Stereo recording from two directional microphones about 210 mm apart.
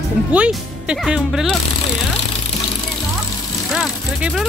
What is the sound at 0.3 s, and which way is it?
Speech, 5° right (ahead or behind).